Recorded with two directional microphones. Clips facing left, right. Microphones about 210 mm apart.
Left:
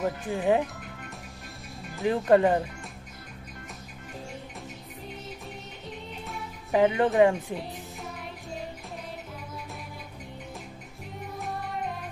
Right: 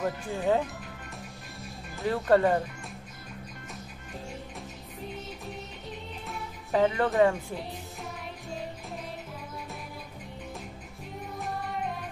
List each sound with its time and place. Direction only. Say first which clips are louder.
0.3 s speech: left 2 dB; 15° left (ahead or behind)
2.0 s speech: left 2 dB; 15° left (ahead or behind)
5.9 s music: left 3 dB; centre (ahead or behind)
6.7 s speech: left 3 dB; 15° left (ahead or behind)
11.3 s music: even; centre (ahead or behind)